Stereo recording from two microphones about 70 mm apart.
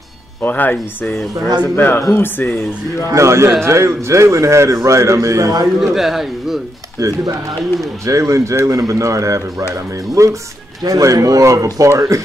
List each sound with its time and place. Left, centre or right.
0.4 s speech: left
3.1 s speech: right
5.8 s speech: centre
7.0 s speech: right
10.8 s speech: right